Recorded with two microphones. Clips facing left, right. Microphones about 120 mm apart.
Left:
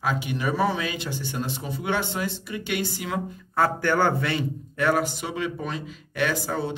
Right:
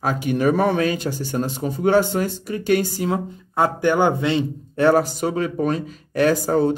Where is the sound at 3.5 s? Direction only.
20° right (ahead or behind).